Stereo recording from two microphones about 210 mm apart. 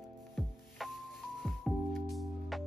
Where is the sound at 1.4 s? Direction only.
Centre (ahead or behind).